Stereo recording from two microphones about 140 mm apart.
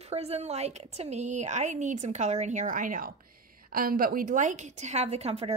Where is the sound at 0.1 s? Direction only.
50° right (ahead or behind).